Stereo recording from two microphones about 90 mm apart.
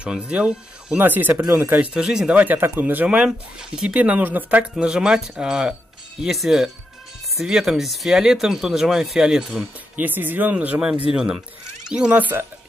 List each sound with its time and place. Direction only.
0.0 s speech: 10° right (ahead or behind)
0.9 s speech: 20° right (ahead or behind)
2.0 s speech: 10° right (ahead or behind)
9.9 s speech: 20° right (ahead or behind)